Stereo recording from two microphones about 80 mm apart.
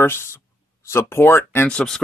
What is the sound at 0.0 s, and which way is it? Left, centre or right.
Speech, left.